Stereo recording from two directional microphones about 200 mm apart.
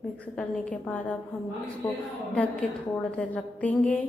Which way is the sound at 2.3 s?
5° left (ahead or behind).